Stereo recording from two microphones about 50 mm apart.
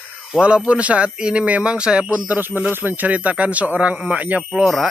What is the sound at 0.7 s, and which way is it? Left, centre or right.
Speech, right.